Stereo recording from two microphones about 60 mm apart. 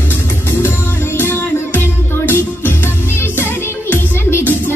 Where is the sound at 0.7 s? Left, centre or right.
Left.